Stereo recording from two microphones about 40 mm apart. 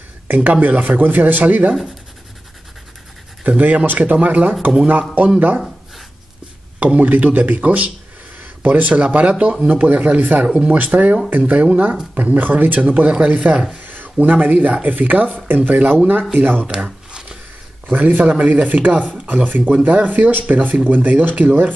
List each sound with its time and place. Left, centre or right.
0.3 s speech: right
3.4 s a man's voice: right
6.8 s a man's voice: right
10.4 s a man's voice: right
11.5 s a man's voice: right
12.8 s a man's voice: right
13.8 s a sound: right
14.1 s a man's voice: right
16.7 s shuffling cards: right
17.8 s a man's voice: right